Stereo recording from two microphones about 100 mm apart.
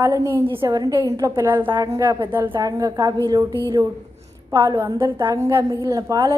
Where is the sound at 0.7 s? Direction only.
35° right (ahead or behind).